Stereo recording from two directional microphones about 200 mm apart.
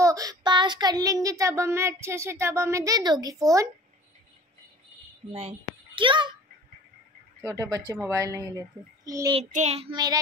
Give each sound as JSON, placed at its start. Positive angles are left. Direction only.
{"t": 0.0, "sound": "child singing", "side_deg": -15}
{"t": 5.3, "sound": "a child's voice", "side_deg": -30}
{"t": 7.4, "sound": "child singing", "side_deg": -15}
{"t": 9.4, "sound": "child singing", "side_deg": -35}